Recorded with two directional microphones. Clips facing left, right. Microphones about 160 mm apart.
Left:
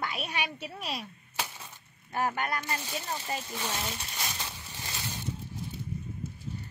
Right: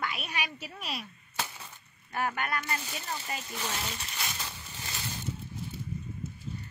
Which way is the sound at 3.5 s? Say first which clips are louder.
Left 1 dB; 15° left (ahead or behind).